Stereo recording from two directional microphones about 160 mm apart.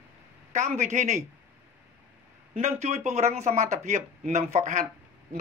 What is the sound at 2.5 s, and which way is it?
Speech, 45° right (ahead or behind).